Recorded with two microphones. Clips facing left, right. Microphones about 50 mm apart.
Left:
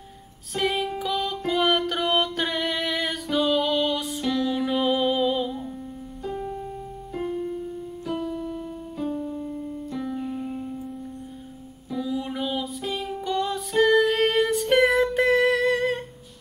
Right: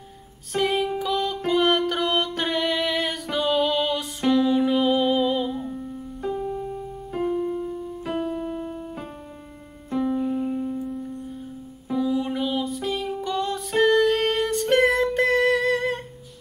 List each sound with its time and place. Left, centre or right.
0.6 s music: centre
7.2 s piano: centre
7.5 s piano: right
8.2 s piano: right
9.8 s keyboard: right
10.1 s music: centre
12.0 s music: centre